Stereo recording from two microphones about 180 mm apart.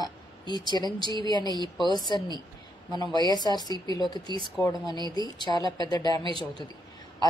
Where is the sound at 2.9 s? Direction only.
20° left (ahead or behind).